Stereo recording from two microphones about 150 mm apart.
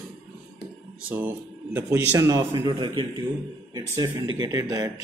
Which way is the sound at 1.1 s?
10° right (ahead or behind).